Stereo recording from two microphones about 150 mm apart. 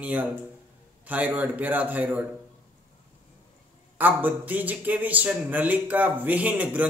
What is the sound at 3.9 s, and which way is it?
A man's voice, 10° right (ahead or behind).